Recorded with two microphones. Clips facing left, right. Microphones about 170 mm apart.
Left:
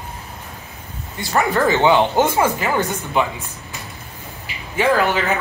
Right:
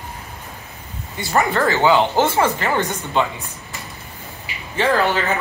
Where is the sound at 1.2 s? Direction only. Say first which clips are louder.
Even; centre (ahead or behind).